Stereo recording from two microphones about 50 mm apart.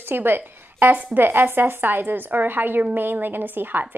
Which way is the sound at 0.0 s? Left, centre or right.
Right.